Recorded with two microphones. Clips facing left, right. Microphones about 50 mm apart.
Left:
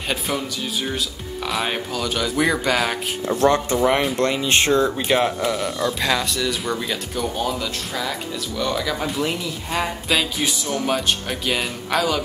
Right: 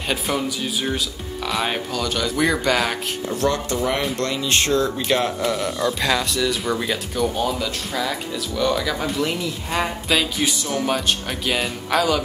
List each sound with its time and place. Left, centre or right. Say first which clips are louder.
0.1 s speech: right 2 dB; centre
3.3 s speech: left 5 dB; left; by 12.2 s centre